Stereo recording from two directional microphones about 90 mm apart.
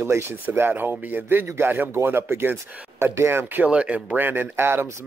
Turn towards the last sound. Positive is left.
turn(degrees=-25)  # may be behind; listen again after turning